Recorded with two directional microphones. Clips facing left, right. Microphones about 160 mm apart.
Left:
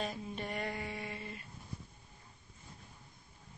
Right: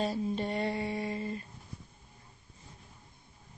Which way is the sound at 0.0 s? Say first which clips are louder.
Right 8 dB; 30° right (ahead or behind).